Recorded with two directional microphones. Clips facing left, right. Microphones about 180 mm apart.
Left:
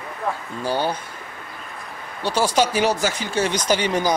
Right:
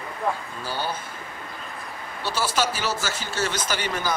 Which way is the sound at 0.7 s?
15° left (ahead or behind).